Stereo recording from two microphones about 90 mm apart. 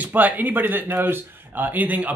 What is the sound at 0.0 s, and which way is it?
Speech, 20° right (ahead or behind).